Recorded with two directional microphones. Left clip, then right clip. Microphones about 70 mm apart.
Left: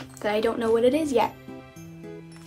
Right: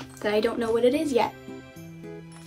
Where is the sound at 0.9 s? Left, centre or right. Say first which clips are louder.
Left 1 dB; left.